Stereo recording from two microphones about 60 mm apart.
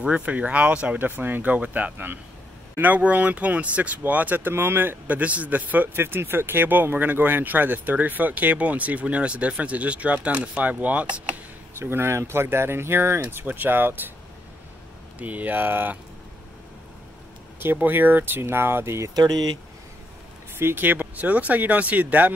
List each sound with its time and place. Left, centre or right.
0.0 s speech: right
0.9 s speech: right
11.8 s speech: right
15.1 s speech: right
17.6 s speech: right
20.5 s speech: right